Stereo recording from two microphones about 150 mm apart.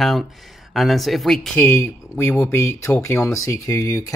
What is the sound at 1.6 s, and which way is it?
Speech, 15° left (ahead or behind).